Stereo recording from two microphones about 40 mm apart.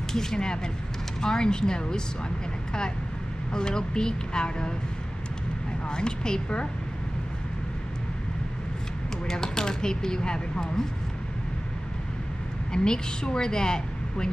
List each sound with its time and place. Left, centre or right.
0.1 s speech: centre
3.5 s a woman's voice: centre
5.9 s a woman's voice: left
9.3 s speech: centre
12.7 s a woman's voice: centre